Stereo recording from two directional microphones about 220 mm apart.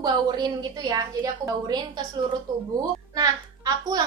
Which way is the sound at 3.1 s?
15° right (ahead or behind).